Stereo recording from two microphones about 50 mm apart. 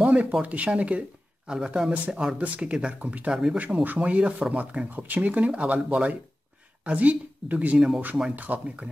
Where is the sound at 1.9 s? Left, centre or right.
Right.